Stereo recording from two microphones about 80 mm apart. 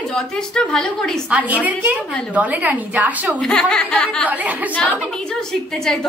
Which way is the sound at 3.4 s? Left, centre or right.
Centre.